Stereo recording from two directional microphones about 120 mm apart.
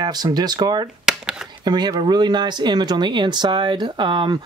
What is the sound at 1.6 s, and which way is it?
Speech, 35° right (ahead or behind).